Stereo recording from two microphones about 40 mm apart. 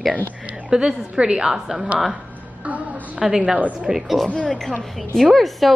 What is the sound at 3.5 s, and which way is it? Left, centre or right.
Speech, right.